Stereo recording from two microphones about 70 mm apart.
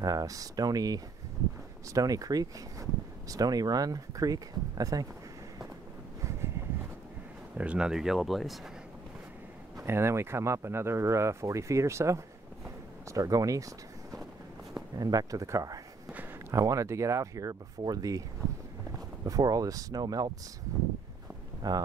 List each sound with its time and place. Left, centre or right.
0.0 s speech: right
7.5 s speech: centre
9.8 s speech: right
13.1 s speech: right
14.7 s speech: right
15.4 s speech: right
17.8 s speech: right
19.2 s speech: right
21.6 s speech: right